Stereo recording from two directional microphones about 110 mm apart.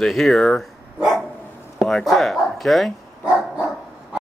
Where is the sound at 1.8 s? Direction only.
5° left (ahead or behind).